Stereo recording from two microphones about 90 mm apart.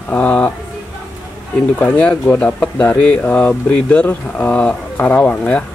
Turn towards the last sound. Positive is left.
turn(degrees=15)  # may be behind; listen again after turning